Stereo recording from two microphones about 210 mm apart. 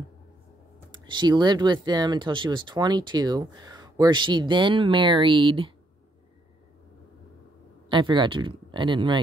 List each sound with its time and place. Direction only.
0.9 s speech: 20° right (ahead or behind)
7.9 s speech: 20° right (ahead or behind)